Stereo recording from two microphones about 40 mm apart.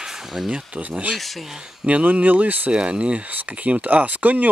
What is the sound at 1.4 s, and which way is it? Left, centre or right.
Speech, centre.